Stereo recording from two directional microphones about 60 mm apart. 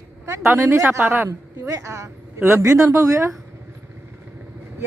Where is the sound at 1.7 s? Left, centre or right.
Right.